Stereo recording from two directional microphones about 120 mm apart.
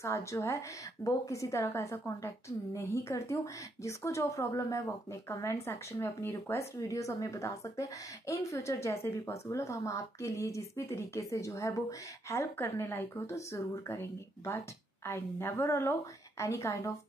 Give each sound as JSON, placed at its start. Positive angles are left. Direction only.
{"t": 0.0, "sound": "speech", "side_deg": 25}